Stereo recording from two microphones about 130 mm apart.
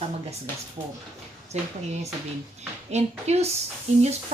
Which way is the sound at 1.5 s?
60° right (ahead or behind).